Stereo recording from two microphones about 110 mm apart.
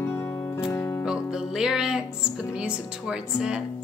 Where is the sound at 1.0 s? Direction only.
5° right (ahead or behind).